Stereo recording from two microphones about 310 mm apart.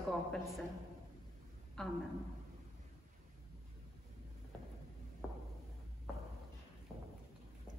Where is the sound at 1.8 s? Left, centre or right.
Centre.